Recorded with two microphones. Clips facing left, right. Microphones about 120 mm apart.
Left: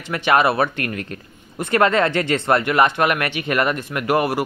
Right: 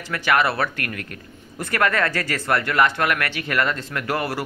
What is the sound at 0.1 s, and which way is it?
Speech, 20° left (ahead or behind).